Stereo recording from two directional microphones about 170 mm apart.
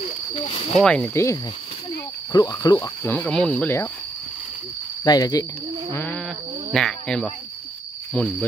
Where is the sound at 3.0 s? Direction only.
10° left (ahead or behind).